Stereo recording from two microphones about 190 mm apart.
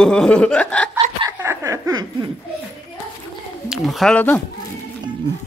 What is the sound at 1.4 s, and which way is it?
Laughter, 15° right (ahead or behind).